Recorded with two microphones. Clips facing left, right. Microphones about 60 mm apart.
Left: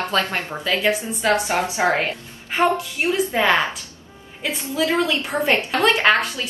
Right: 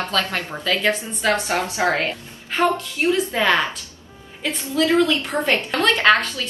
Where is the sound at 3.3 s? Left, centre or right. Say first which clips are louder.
Left 1 dB; centre.